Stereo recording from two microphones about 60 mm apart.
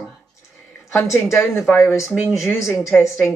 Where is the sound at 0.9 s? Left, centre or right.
Left.